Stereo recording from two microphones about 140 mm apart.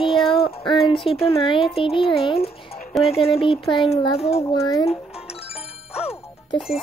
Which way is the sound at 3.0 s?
45° left (ahead or behind).